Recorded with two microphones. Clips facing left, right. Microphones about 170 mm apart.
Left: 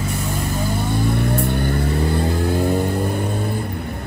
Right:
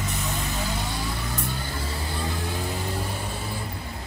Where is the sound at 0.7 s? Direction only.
50° left (ahead or behind).